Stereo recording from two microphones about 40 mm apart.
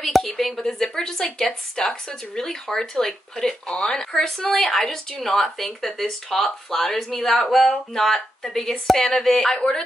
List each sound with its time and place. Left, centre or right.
0.2 s speech: centre